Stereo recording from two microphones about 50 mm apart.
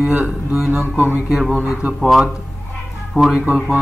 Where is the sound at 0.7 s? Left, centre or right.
Right.